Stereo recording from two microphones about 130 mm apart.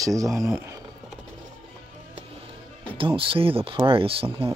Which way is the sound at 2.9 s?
45° right (ahead or behind).